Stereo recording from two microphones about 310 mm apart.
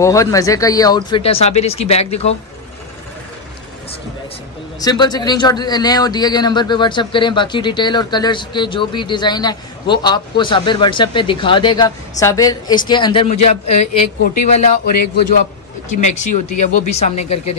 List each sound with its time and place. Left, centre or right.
0.0 s a man's voice: centre
4.7 s a man's voice: centre
16.0 s speech: left
16.9 s speech: left